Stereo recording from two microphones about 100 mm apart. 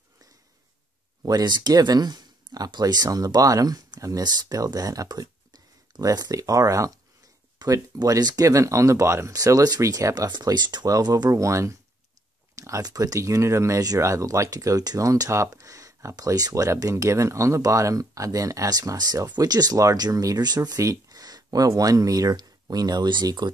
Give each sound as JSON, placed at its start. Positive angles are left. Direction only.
{"t": 1.2, "sound": "speech", "side_deg": -45}
{"t": 11.2, "sound": "speech", "side_deg": -30}